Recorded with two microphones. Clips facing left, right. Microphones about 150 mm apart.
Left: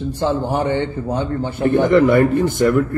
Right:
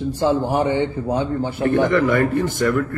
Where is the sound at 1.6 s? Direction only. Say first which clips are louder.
Left 4 dB; 25° left (ahead or behind).